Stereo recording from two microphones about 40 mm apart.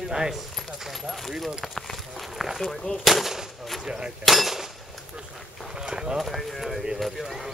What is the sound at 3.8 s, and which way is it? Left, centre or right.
Speech, centre.